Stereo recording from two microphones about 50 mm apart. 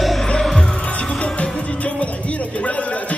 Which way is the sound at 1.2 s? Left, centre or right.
Left.